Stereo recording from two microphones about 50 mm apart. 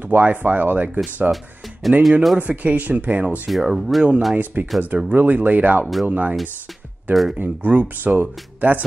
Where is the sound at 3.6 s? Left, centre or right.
Centre.